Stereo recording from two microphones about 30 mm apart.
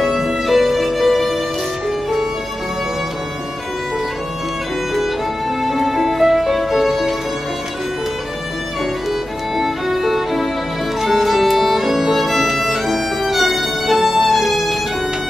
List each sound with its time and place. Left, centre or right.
0.0 s music: centre
5.6 s music: centre
9.6 s music: centre
11.0 s violin: centre
14.3 s music: centre